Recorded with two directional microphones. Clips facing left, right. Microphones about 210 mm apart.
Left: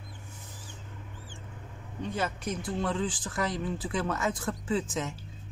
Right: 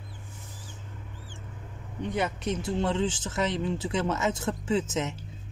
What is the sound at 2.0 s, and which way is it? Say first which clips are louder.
Speech: right 3 dB; 20° right (ahead or behind).